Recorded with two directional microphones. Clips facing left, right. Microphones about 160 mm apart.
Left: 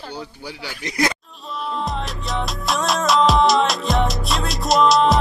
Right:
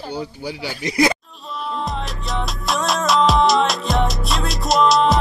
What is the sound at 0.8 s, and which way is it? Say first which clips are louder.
Music: right 4 dB; 5° right (ahead or behind).